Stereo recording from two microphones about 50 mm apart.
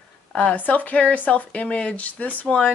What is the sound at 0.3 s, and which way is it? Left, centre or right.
Speech, left.